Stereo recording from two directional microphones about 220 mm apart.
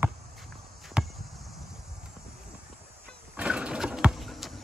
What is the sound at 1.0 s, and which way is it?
Chop, 5° right (ahead or behind).